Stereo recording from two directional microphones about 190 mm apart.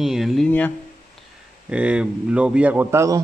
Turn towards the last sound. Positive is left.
turn(degrees=-15)  # may be behind; listen again after turning